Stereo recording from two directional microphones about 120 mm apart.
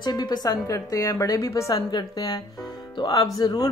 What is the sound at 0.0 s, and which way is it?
A woman's voice, 35° left (ahead or behind).